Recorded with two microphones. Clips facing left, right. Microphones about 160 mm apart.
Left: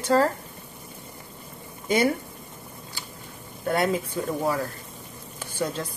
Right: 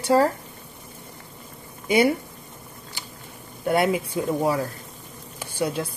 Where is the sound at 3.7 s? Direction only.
10° right (ahead or behind).